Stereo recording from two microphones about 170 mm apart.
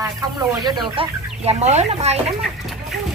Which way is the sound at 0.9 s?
35° right (ahead or behind).